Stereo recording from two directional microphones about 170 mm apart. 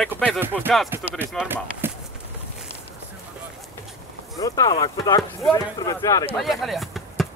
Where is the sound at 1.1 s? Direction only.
10° right (ahead or behind).